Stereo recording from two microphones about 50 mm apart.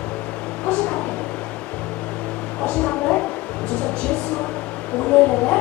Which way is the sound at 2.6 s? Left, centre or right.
Centre.